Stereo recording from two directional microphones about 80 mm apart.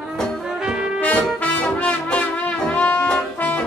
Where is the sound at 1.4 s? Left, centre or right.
Centre.